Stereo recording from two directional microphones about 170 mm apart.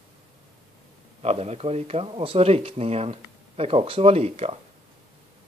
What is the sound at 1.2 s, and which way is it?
Speech, 40° right (ahead or behind).